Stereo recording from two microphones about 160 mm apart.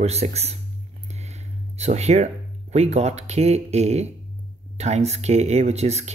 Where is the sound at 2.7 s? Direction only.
40° right (ahead or behind).